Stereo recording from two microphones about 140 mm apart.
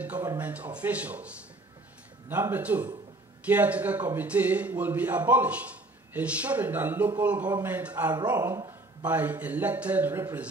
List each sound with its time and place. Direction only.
0.0 s a sound: 10° right (ahead or behind)
0.4 s a man's voice: 10° right (ahead or behind)
8.4 s speech: 25° right (ahead or behind)
9.0 s a man's voice: 10° right (ahead or behind)